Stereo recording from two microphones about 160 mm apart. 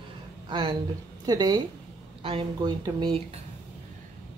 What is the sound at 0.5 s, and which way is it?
A woman's voice, 30° right (ahead or behind).